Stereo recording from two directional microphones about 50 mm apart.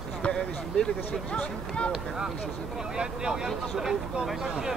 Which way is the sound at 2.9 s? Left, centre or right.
Centre.